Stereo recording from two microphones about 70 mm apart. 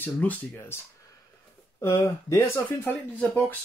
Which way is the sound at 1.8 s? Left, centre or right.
Left.